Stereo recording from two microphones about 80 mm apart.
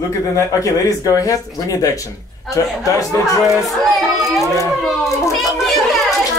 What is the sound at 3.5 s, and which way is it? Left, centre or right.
A child's voice, centre.